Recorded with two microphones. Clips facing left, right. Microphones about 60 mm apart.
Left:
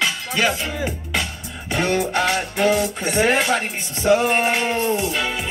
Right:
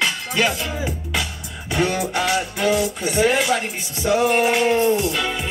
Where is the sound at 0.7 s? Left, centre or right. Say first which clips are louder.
Left 1 dB; left.